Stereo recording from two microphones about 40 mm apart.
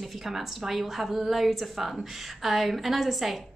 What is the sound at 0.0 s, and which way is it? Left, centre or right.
A woman's voice, centre.